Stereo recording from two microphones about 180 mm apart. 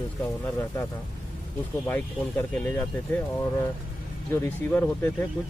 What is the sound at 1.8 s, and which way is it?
Speech, 10° left (ahead or behind).